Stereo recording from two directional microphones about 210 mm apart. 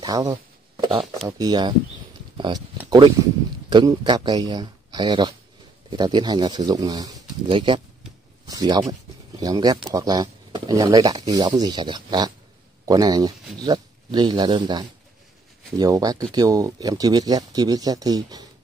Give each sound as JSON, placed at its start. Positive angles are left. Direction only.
{"t": 0.0, "sound": "a sound", "side_deg": -20}
{"t": 1.4, "sound": "speech", "side_deg": -20}
{"t": 3.7, "sound": "speech", "side_deg": -20}